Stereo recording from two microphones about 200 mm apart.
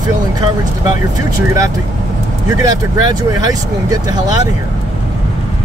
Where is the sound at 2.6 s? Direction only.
20° right (ahead or behind).